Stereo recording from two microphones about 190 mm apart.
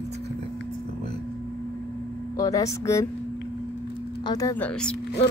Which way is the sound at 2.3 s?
20° left (ahead or behind).